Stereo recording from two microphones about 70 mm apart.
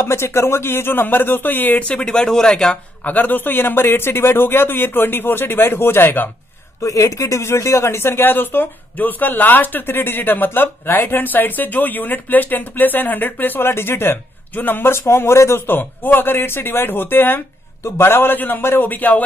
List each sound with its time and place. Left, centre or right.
0.0 s speech: left; by 2.0 s centre
2.0 s speech: centre
3.0 s speech: left
6.8 s speech: left